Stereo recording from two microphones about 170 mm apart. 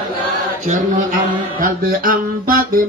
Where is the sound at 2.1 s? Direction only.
55° right (ahead or behind).